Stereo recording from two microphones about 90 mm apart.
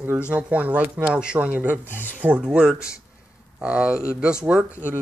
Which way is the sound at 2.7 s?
35° left (ahead or behind).